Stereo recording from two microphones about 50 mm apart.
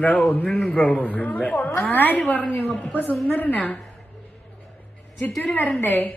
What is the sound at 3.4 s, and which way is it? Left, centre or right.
Speech, left.